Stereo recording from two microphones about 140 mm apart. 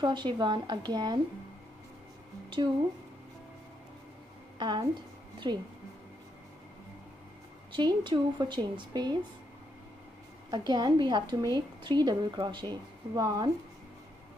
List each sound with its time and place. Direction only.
0.0 s a woman's voice: 35° right (ahead or behind)
4.6 s a woman's voice: 30° right (ahead or behind)
7.7 s a woman's voice: 35° right (ahead or behind)
10.5 s a woman's voice: 30° right (ahead or behind)